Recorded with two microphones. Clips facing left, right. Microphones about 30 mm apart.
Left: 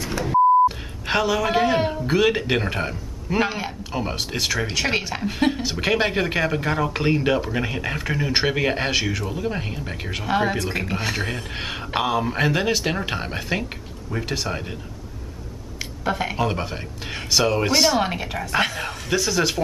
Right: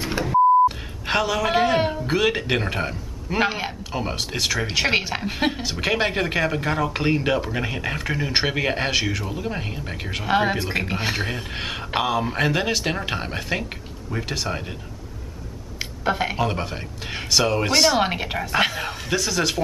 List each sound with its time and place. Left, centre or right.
0.2 s speech: centre
4.7 s speech: centre
5.5 s speech: centre
10.2 s speech: centre
11.2 s speech: centre
15.8 s a sound: centre
16.3 s speech: centre
17.9 s speech: centre
18.5 s speech: centre